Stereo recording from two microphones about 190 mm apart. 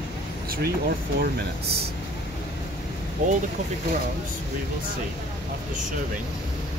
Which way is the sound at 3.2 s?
40° right (ahead or behind).